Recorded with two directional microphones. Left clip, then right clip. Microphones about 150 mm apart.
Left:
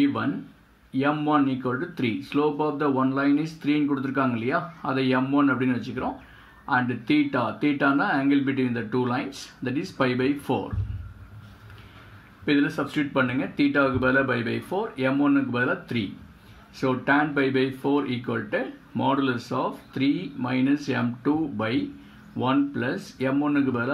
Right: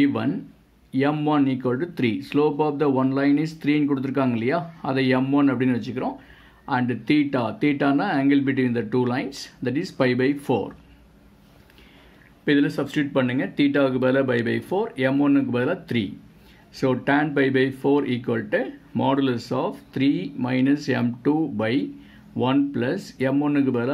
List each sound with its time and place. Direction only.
0.0 s speech: 35° right (ahead or behind)
12.4 s speech: 30° right (ahead or behind)